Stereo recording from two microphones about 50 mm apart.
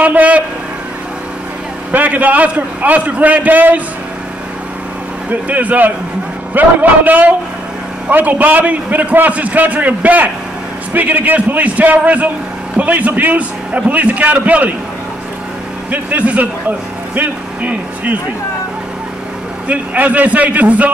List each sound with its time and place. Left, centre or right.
0.0 s a sound: right
1.9 s a man's voice: right
5.3 s a man's voice: right
15.9 s speech: right
19.7 s a man's voice: right